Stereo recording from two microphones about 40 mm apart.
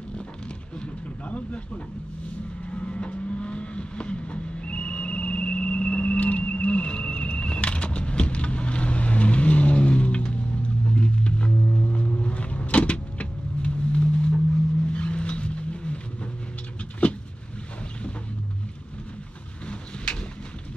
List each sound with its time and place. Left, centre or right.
2.7 s vehicle: left
6.1 s a sound: left
11.0 s vehicle: left